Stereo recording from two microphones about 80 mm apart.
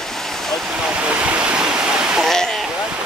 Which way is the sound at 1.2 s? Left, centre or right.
Centre.